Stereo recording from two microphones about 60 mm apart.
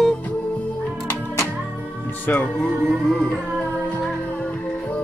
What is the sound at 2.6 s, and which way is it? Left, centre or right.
Music, centre.